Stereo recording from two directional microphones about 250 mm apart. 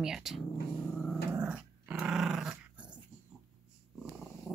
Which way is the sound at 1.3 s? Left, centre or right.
Centre.